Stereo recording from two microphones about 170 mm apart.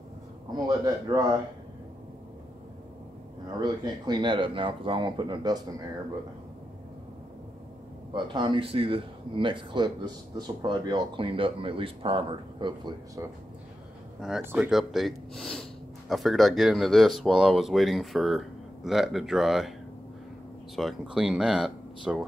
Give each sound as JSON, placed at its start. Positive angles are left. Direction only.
{"t": 0.7, "sound": "speech", "side_deg": -25}
{"t": 3.6, "sound": "speech", "side_deg": -25}
{"t": 8.1, "sound": "speech", "side_deg": -30}
{"t": 14.4, "sound": "speech", "side_deg": -10}
{"t": 14.7, "sound": "speech", "side_deg": 0}
{"t": 20.7, "sound": "speech", "side_deg": 0}